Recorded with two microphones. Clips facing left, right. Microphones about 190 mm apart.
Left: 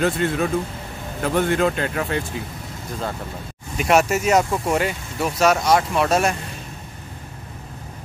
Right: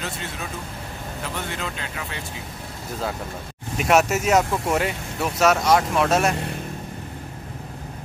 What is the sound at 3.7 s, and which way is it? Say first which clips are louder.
Speech: left 1 dB; centre (ahead or behind).